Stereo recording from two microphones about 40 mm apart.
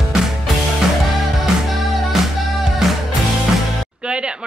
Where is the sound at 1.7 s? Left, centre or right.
Centre.